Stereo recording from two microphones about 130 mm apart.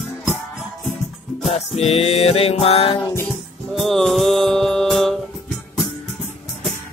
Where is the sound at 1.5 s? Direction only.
50° left (ahead or behind).